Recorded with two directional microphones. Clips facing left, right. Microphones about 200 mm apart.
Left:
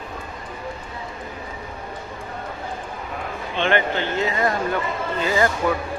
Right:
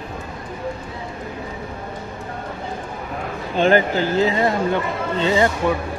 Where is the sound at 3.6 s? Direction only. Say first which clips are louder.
Right 5 dB; 40° right (ahead or behind).